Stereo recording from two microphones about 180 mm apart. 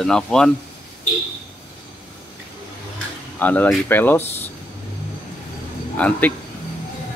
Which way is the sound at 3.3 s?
10° left (ahead or behind).